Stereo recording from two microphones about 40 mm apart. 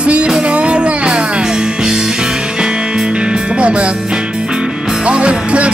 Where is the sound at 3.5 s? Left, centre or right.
Right.